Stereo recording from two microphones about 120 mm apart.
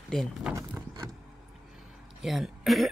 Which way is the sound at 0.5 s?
20° right (ahead or behind).